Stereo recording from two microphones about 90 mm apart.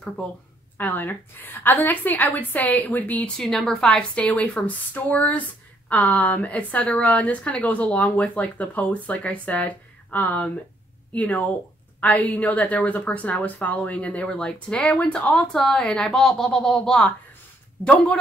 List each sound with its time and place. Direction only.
0.7 s a woman's voice: 20° left (ahead or behind)
3.3 s a woman's voice: 5° left (ahead or behind)